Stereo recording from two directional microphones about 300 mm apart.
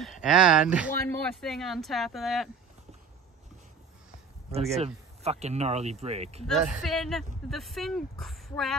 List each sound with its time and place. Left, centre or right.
0.0 s speech: centre
4.5 s speech: right
6.4 s speech: centre